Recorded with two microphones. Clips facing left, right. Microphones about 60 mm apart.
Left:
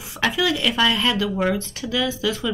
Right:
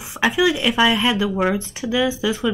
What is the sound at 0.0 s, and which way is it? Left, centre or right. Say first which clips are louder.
Speech: right 4 dB; right.